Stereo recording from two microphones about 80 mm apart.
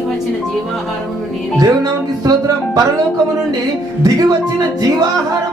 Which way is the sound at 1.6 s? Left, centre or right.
Right.